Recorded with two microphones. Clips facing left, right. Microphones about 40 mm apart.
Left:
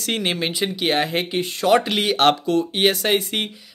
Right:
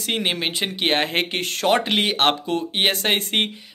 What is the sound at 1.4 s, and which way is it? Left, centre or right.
Speech, right.